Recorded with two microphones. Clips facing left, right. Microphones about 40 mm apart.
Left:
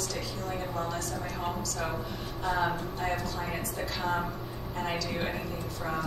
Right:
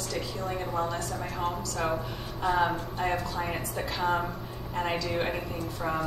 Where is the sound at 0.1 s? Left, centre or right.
Right.